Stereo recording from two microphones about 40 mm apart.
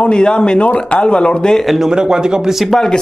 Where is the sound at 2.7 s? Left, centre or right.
Centre.